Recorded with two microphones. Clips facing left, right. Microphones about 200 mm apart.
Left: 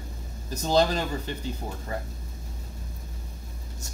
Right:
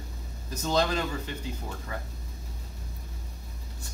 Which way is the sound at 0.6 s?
35° left (ahead or behind).